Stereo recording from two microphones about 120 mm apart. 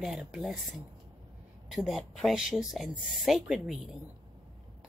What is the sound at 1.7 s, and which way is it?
Speech, centre (ahead or behind).